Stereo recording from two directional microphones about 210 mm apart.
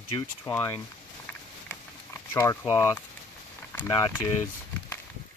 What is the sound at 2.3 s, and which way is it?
Speech, 15° left (ahead or behind).